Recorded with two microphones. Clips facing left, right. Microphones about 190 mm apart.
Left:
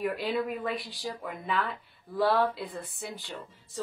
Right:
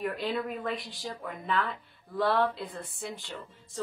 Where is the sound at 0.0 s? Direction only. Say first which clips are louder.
Left 2 dB; 5° left (ahead or behind).